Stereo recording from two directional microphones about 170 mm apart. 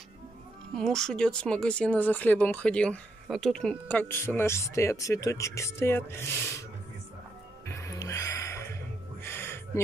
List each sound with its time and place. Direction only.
0.7 s speech: 5° left (ahead or behind)
7.6 s music: 20° left (ahead or behind)
9.2 s a sound: 15° left (ahead or behind)